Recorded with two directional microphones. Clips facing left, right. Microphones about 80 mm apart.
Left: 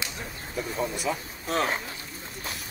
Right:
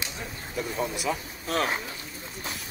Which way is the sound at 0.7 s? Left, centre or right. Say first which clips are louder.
Even; centre.